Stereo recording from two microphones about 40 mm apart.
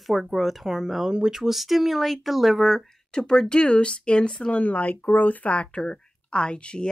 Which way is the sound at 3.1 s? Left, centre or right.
Centre.